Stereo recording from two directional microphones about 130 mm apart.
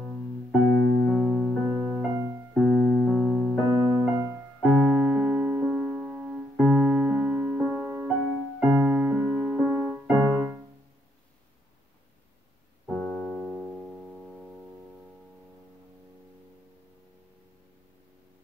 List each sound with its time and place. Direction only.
0.0 s piano: 5° right (ahead or behind)
1.0 s music: centre (ahead or behind)
2.0 s music: 20° right (ahead or behind)
2.5 s keyboard: centre (ahead or behind)
3.7 s music: 20° right (ahead or behind)
4.6 s keyboard: 5° right (ahead or behind)
12.8 s piano: 10° left (ahead or behind)
14.1 s music: 5° right (ahead or behind)